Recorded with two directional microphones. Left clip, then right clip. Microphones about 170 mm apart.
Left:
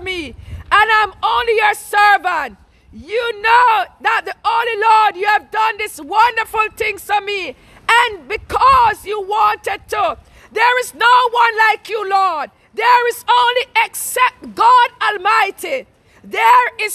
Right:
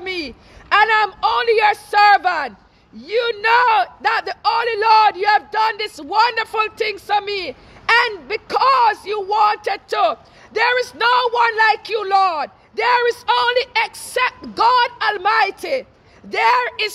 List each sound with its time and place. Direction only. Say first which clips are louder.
0.0 s a man's voice: left 2 dB; 15° left (ahead or behind)